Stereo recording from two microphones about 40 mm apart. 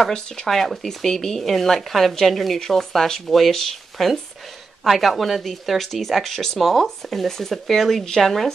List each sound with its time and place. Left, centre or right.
0.5 s speech: centre